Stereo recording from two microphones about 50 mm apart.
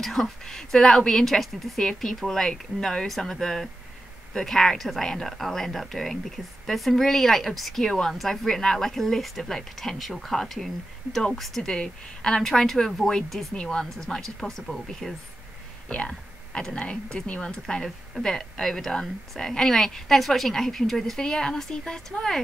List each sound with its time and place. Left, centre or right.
0.0 s speech: centre